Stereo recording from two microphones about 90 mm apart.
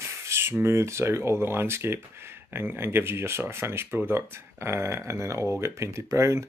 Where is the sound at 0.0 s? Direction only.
30° right (ahead or behind).